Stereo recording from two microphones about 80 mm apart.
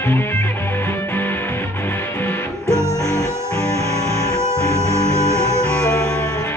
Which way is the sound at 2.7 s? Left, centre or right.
Right.